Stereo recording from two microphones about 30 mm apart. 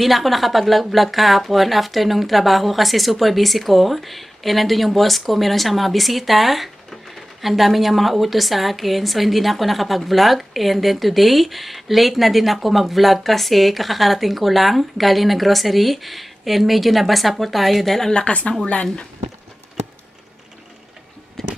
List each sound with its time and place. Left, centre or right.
0.0 s speech: centre
18.1 s speech: left
21.4 s a sound: centre